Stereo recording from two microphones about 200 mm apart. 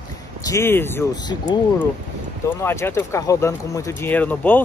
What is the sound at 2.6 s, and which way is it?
Speech, 15° left (ahead or behind).